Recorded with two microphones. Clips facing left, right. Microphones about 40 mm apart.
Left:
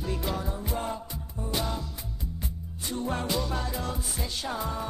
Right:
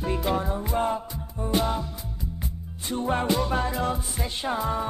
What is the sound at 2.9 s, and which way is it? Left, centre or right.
Music, right.